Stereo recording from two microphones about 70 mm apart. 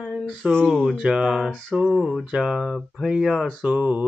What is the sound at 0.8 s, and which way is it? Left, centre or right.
Speech, centre.